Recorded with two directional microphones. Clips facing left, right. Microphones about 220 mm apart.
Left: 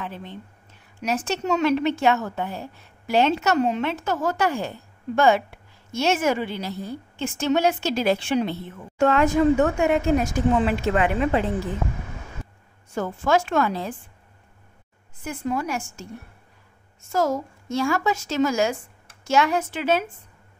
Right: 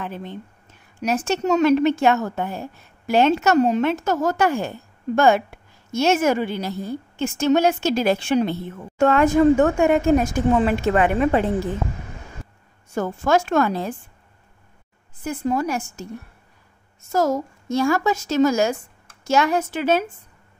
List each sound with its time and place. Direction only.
0.0 s a woman's voice: 50° right (ahead or behind)
12.9 s a woman's voice: 45° right (ahead or behind)
15.2 s a woman's voice: 40° right (ahead or behind)
17.1 s a woman's voice: 40° right (ahead or behind)